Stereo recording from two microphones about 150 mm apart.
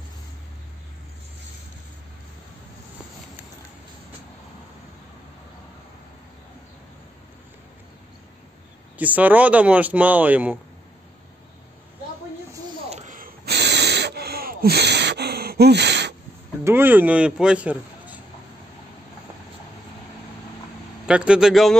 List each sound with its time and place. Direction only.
8.9 s speech: 10° right (ahead or behind)
12.9 s gasp: 60° right (ahead or behind); by 15.8 s 90° right
16.6 s speech: 15° right (ahead or behind)
21.1 s a man's voice: 5° right (ahead or behind)